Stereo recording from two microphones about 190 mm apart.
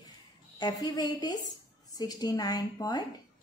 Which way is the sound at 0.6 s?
20° left (ahead or behind).